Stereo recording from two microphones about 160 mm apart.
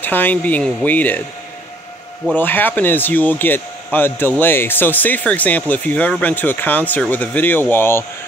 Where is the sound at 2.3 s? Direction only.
10° left (ahead or behind).